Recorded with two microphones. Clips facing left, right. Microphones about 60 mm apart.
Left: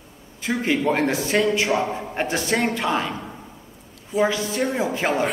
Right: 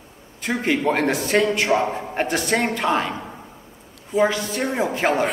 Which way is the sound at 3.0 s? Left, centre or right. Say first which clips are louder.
Right 1 dB; centre.